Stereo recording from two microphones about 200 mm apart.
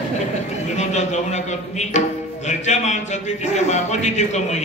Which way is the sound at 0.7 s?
35° left (ahead or behind).